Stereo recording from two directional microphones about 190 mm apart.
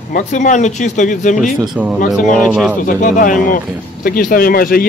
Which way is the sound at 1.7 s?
5° right (ahead or behind).